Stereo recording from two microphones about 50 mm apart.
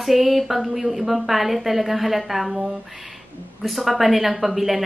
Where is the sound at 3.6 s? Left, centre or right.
Centre.